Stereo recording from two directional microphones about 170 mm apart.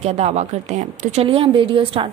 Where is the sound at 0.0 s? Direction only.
40° right (ahead or behind).